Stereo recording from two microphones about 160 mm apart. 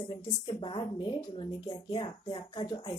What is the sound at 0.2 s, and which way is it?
A woman's voice, 30° left (ahead or behind).